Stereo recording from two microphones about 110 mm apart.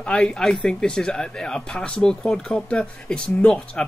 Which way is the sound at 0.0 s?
10° left (ahead or behind).